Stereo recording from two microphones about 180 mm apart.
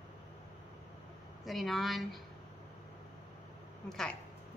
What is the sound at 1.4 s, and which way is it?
Speech, centre (ahead or behind).